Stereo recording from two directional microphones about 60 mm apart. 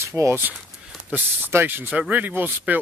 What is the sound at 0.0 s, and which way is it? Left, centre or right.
Speech, right.